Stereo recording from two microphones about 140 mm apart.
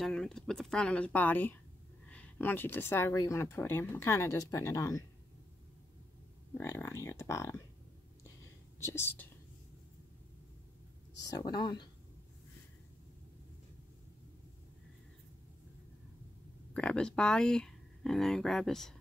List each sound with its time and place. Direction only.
0.0 s speech: 5° left (ahead or behind); by 5.0 s 20° left (ahead or behind)
6.6 s speech: 20° left (ahead or behind)
8.7 s speech: 20° left (ahead or behind)
11.2 s speech: 30° left (ahead or behind)
16.7 s speech: 10° left (ahead or behind)